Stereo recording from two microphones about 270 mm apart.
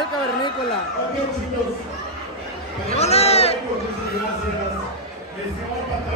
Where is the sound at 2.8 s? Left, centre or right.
Left.